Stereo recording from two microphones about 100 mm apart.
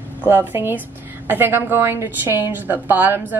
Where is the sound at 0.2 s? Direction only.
20° right (ahead or behind).